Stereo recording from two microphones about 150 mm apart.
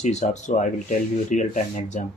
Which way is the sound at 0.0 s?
55° left (ahead or behind).